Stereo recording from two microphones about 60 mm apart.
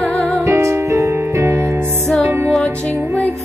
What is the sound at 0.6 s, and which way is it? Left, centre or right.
Music, right.